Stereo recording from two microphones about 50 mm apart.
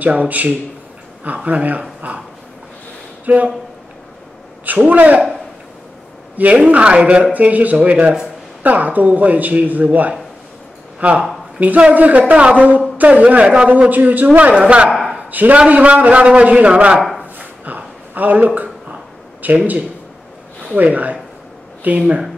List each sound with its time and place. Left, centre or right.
0.0 s a man's voice: right
3.3 s speech: right
4.6 s speech: right
6.3 s a man's voice: right
13.7 s a man's voice: right
15.3 s a man's voice: right
17.4 s a sound: right
19.4 s speech: right